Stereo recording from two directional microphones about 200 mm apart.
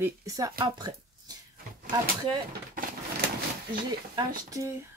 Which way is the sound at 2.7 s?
45° right (ahead or behind).